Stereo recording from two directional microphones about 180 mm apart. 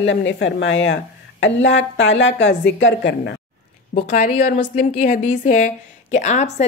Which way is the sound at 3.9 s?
50° left (ahead or behind).